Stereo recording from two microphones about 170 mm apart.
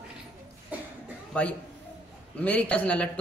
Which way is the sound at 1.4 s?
5° left (ahead or behind).